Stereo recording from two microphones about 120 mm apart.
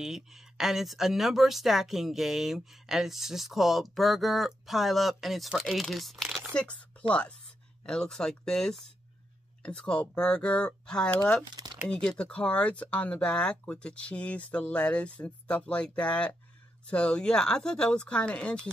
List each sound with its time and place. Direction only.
0.0 s speech: 5° right (ahead or behind)
11.5 s typing: 35° right (ahead or behind)
11.9 s speech: 5° left (ahead or behind)